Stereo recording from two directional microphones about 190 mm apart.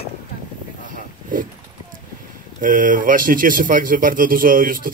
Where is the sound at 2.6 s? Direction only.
45° right (ahead or behind).